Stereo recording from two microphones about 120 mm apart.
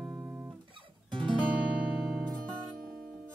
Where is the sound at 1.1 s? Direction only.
40° right (ahead or behind).